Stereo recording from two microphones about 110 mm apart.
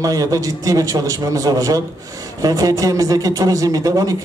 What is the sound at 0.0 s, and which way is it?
A man's voice, 35° right (ahead or behind).